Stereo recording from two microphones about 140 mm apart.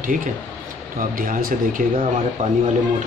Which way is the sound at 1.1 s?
85° right.